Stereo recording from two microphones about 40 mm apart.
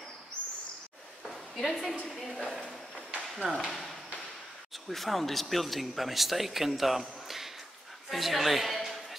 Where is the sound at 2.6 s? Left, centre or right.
Centre.